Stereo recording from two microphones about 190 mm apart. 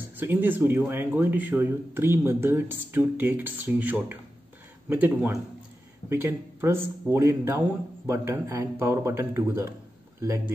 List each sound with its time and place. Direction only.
0.0 s speech: 10° right (ahead or behind)